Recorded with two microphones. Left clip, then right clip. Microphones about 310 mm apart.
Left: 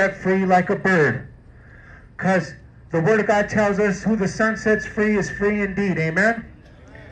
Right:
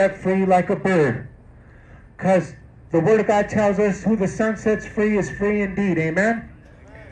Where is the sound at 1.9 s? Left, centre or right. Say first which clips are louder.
Right 2 dB; left.